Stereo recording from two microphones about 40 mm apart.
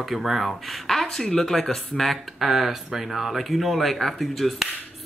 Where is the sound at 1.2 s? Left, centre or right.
Left.